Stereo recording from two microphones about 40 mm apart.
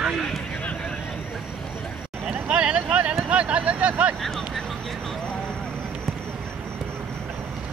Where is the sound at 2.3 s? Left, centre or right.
Right.